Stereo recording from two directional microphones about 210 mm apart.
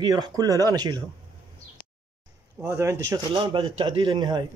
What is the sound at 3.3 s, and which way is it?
Speech, 25° right (ahead or behind).